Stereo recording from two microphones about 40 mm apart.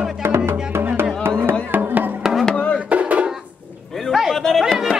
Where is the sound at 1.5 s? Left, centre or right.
Right.